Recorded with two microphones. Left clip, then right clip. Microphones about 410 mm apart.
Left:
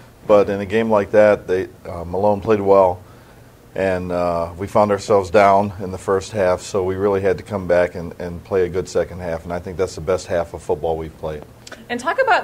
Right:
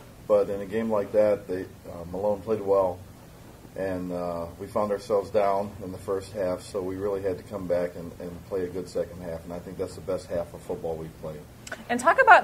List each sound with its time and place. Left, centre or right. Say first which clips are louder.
0.3 s speech: left 9 dB; left
11.7 s speech: left 1 dB; right